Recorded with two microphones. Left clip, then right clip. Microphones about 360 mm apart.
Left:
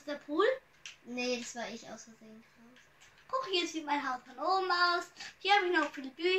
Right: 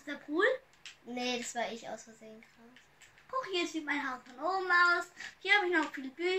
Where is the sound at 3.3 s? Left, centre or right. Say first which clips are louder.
Left 1 dB; centre.